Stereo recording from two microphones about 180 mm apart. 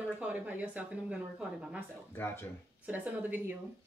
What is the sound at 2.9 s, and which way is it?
Speech, 10° right (ahead or behind).